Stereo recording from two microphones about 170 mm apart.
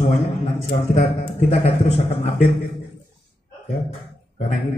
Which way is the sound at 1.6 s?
40° left (ahead or behind).